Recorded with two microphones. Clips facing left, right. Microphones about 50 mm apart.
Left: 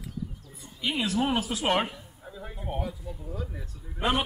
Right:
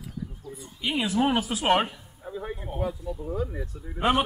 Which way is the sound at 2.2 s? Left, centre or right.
Centre.